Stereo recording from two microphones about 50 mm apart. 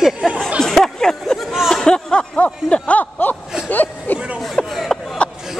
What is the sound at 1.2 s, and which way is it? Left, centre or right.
Chatter, centre.